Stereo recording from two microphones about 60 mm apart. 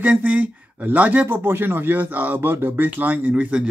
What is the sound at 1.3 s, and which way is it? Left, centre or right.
Speech, right.